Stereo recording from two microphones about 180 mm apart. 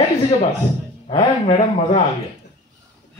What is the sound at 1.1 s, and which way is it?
Speech, 30° left (ahead or behind).